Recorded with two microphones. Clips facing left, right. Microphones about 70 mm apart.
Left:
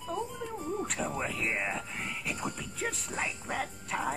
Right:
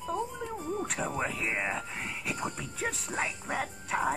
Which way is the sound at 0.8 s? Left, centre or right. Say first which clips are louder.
Right 1 dB; centre.